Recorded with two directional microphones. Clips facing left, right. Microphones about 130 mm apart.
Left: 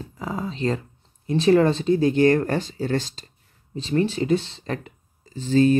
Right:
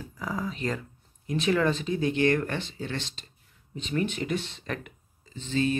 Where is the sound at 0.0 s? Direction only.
25° left (ahead or behind).